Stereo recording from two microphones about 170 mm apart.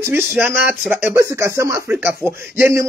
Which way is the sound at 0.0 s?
15° right (ahead or behind).